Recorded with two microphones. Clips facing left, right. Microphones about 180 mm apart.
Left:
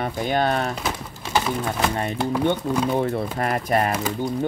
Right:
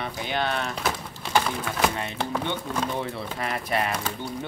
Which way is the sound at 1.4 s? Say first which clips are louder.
Left 2 dB; 5° left (ahead or behind).